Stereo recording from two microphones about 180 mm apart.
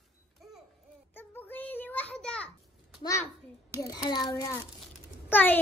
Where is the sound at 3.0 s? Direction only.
15° left (ahead or behind).